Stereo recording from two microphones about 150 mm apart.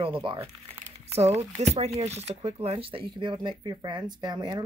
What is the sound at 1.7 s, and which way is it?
Speech, 45° right (ahead or behind).